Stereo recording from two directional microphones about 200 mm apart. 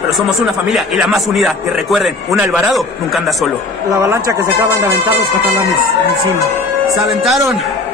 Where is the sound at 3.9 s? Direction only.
15° right (ahead or behind).